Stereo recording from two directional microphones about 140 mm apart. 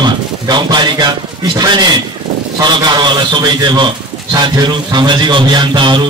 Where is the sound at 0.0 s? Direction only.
30° right (ahead or behind).